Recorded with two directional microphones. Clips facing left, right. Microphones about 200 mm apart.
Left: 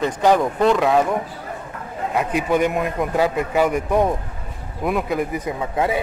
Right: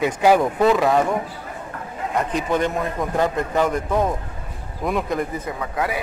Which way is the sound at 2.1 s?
10° left (ahead or behind).